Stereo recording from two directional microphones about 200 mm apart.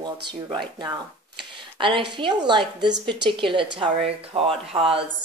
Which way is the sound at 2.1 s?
20° right (ahead or behind).